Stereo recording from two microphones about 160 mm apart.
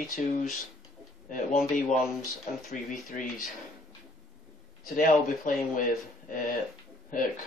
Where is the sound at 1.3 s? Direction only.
55° left (ahead or behind).